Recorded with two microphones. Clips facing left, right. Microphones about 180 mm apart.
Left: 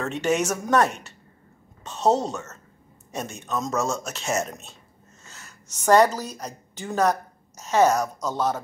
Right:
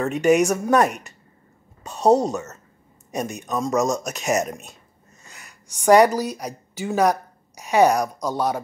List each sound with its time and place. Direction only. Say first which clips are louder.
0.3 s a woman's voice: right 5 dB; 15° right (ahead or behind)